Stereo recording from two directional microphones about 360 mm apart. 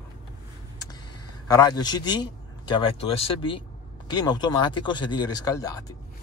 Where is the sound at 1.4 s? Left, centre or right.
Centre.